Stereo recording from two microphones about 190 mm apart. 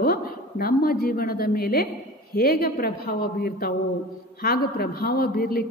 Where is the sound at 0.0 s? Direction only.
50° left (ahead or behind).